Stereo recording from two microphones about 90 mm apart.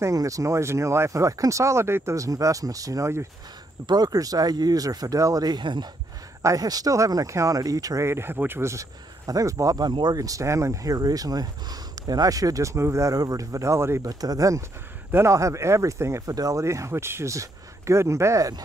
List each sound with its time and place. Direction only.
0.0 s speech: 40° right (ahead or behind)
3.8 s speech: 50° right (ahead or behind)
6.4 s speech: 40° right (ahead or behind)
14.0 s speech: 45° right (ahead or behind)
15.0 s speech: 25° right (ahead or behind)